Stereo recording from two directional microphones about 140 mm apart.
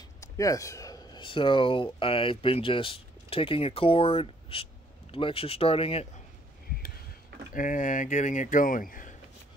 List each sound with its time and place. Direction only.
0.2 s speech: 25° left (ahead or behind); by 6.0 s 45° left (ahead or behind)
7.5 s speech: 70° left (ahead or behind)